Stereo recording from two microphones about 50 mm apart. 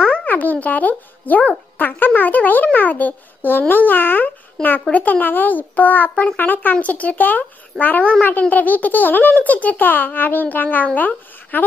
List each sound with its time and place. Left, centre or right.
0.0 s music: left
1.8 s a child's voice: left
4.6 s a child's voice: centre
4.9 s a child's voice: left